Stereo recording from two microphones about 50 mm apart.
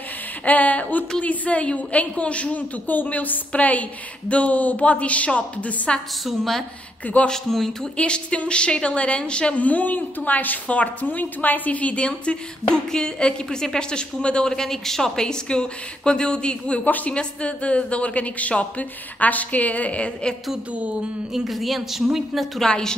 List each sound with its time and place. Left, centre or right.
0.5 s a woman's voice: left
6.2 s a woman's voice: centre
8.0 s a woman's voice: left
16.8 s speech: left
17.1 s a woman's voice: left
21.3 s speech: centre
22.6 s a woman's voice: centre